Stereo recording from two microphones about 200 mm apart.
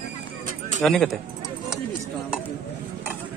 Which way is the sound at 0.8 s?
Centre (ahead or behind).